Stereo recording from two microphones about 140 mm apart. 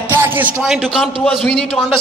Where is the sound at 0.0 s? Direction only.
15° right (ahead or behind).